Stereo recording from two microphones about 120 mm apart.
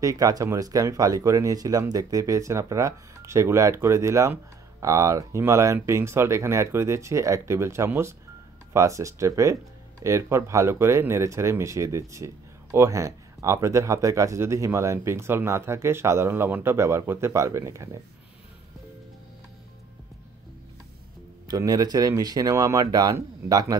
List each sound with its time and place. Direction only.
0.0 s speech: 30° right (ahead or behind)
21.5 s speech: 30° right (ahead or behind)